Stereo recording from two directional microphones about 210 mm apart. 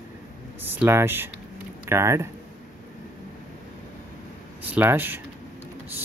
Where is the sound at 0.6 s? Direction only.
10° right (ahead or behind).